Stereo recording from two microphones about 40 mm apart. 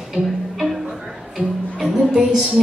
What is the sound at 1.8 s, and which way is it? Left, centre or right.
Music, centre.